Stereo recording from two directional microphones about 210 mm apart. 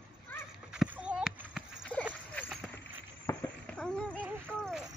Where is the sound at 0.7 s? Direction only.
5° right (ahead or behind).